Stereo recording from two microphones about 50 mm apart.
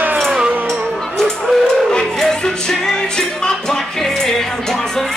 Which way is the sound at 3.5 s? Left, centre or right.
Centre.